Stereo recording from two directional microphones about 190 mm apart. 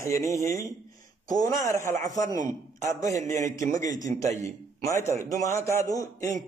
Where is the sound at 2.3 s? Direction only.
40° right (ahead or behind).